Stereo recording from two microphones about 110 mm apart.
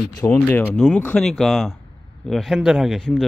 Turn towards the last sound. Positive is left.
turn(degrees=-5)  # may be behind; listen again after turning